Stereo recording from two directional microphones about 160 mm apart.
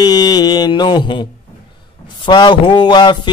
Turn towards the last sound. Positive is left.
turn(degrees=30)  # may be behind; listen again after turning